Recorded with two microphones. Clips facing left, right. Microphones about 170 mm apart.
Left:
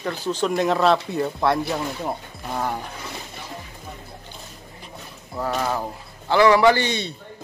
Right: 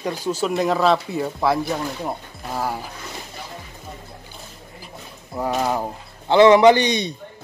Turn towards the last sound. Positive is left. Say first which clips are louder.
# right 4 dB
turn(degrees=-15)  # may be behind; listen again after turning